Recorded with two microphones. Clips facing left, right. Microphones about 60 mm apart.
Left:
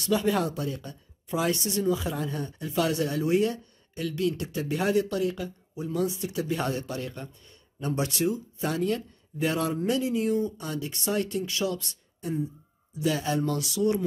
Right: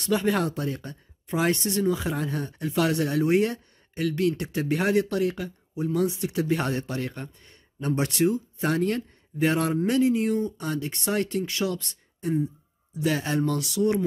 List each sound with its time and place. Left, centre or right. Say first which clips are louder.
0.0 s speech: right 1 dB; right